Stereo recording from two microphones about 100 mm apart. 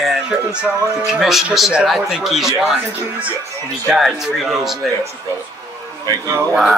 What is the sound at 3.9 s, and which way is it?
A man's voice, 5° right (ahead or behind).